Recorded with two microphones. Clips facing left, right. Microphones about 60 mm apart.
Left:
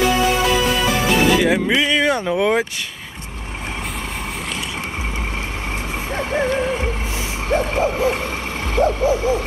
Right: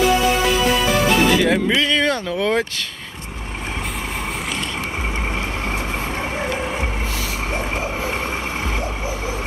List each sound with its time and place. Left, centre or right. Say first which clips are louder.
1.1 s speech: left 3 dB; centre
6.4 s music: left 5 dB; centre
7.4 s a sound: left 8 dB; centre
8.7 s owl: left 9 dB; centre